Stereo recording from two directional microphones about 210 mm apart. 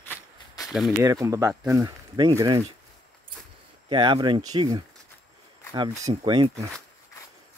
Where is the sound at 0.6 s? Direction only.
Centre (ahead or behind).